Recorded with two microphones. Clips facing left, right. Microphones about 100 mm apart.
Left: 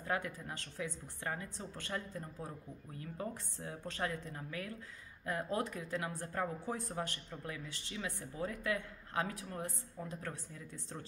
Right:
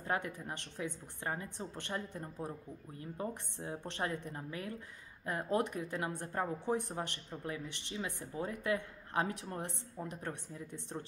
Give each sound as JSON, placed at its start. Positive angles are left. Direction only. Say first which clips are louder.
{"t": 0.0, "sound": "speech", "louder": "right 1 dB", "side_deg": -25}